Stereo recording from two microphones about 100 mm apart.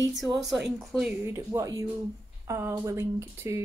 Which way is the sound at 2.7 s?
30° right (ahead or behind).